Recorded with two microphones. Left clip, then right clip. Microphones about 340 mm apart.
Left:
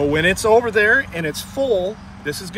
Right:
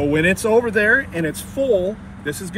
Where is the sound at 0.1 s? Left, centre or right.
Left.